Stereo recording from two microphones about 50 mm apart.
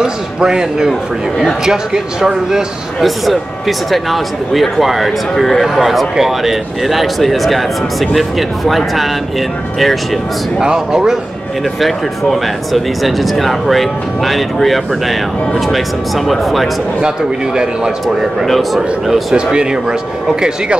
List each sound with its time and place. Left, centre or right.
0.0 s speech: centre
3.0 s speech: centre
10.6 s speech: centre
11.8 s speech: centre
16.3 s speech: centre
18.0 s speech: centre
19.3 s speech: centre